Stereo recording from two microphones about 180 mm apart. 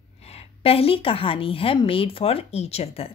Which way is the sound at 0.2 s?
35° left (ahead or behind).